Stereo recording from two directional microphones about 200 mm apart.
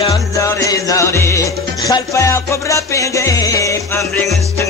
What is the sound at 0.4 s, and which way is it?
Music, 15° left (ahead or behind).